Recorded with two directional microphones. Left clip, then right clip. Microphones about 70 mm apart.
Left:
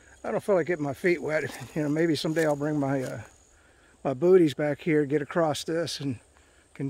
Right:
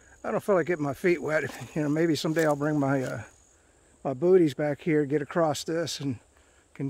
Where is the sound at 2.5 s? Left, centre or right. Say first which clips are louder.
Right 1 dB; right.